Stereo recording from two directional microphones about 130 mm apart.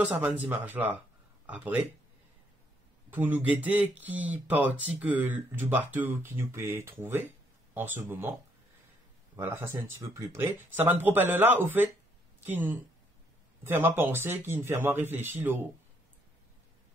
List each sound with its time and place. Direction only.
0.0 s speech: 10° right (ahead or behind)
3.1 s speech: 15° right (ahead or behind)
9.4 s speech: 20° right (ahead or behind)